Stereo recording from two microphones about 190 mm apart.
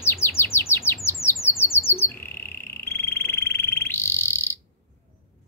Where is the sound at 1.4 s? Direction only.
10° left (ahead or behind).